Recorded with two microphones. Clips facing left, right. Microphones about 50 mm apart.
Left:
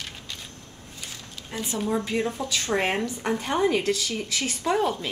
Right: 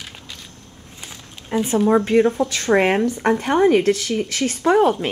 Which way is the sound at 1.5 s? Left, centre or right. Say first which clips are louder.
Right 12 dB; right.